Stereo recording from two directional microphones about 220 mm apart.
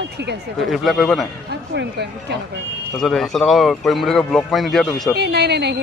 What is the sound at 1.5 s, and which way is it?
Speech, 50° right (ahead or behind).